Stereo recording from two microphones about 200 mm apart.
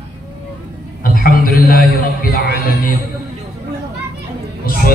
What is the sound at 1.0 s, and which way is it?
A man's voice, 45° left (ahead or behind).